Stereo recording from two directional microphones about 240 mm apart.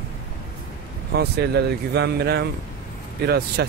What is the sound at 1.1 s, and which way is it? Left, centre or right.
Speech, right.